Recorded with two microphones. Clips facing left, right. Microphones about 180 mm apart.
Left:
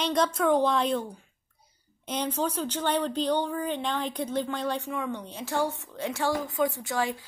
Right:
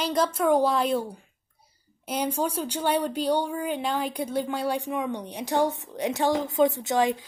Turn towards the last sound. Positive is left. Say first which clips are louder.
# right 6 dB
turn(degrees=-20)  # may be behind; listen again after turning